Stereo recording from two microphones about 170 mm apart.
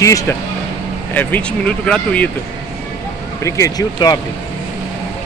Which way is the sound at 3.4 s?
20° left (ahead or behind).